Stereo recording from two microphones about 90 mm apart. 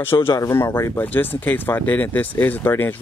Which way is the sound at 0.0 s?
25° left (ahead or behind).